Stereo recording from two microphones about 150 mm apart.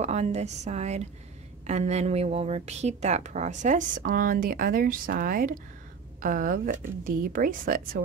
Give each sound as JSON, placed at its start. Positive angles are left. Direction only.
{"t": 0.0, "sound": "a woman's voice", "side_deg": -50}